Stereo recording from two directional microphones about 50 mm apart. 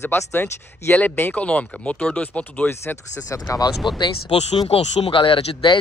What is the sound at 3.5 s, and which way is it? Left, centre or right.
Speech, left.